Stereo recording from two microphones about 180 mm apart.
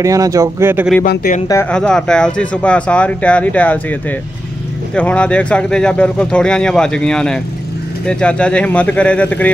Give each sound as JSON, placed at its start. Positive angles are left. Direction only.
{"t": 0.0, "sound": "speech", "side_deg": -20}
{"t": 1.0, "sound": "speech", "side_deg": 50}
{"t": 1.7, "sound": "speech", "side_deg": 5}
{"t": 4.9, "sound": "speech", "side_deg": 5}